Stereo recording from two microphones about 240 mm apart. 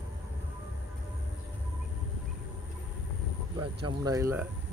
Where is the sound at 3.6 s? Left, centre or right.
Centre.